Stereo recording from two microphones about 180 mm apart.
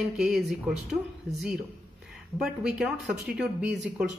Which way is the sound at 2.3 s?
5° right (ahead or behind).